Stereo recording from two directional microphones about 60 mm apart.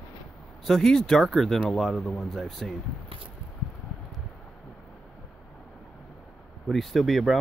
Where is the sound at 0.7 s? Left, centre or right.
Centre.